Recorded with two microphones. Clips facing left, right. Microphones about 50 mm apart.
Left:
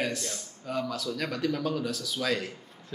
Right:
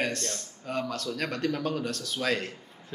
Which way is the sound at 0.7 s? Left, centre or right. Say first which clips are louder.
Even; centre.